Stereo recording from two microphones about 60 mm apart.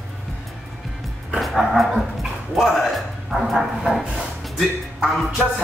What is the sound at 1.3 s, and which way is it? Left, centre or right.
Dog, centre.